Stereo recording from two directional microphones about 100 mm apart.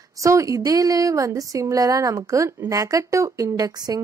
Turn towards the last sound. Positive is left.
turn(degrees=-40)  # may be behind; listen again after turning